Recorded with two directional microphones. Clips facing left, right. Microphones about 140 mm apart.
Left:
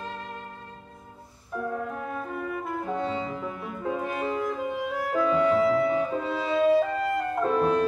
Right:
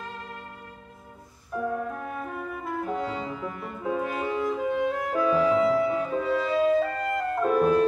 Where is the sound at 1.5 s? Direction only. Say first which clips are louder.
Right 2 dB; centre (ahead or behind).